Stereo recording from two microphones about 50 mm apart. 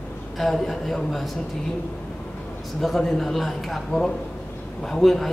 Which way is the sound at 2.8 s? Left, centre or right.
Centre.